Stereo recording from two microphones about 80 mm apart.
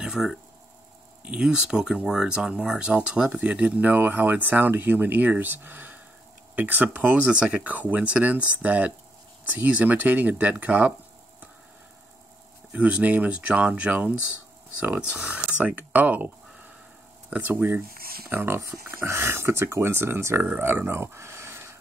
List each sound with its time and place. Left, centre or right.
0.0 s a sound: centre
1.2 s speech: centre
12.7 s speech: centre